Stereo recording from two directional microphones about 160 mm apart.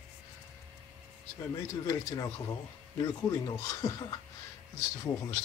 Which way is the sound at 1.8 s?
20° left (ahead or behind).